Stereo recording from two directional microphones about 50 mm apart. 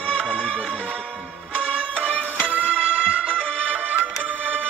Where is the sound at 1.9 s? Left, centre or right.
Left.